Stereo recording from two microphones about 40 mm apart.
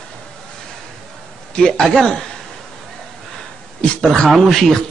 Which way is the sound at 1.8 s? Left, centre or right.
Centre.